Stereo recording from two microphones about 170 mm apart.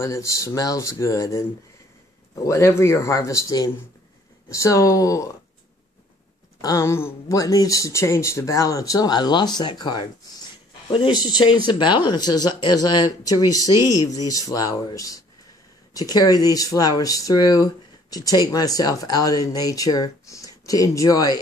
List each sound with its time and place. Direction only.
0.0 s speech: 15° left (ahead or behind)
6.6 s speech: 15° left (ahead or behind)